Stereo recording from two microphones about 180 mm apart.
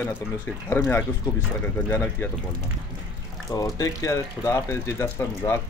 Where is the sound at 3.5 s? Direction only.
20° left (ahead or behind).